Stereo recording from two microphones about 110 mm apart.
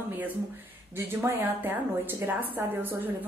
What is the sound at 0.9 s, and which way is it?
A woman's voice, 20° right (ahead or behind).